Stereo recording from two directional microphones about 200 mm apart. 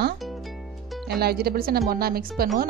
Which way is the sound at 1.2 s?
50° right (ahead or behind).